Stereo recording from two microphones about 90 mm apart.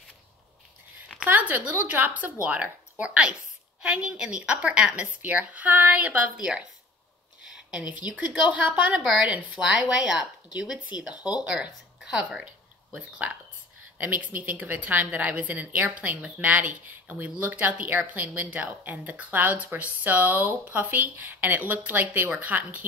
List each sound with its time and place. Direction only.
1.1 s a woman's voice: 15° right (ahead or behind)
13.9 s a woman's voice: 20° right (ahead or behind)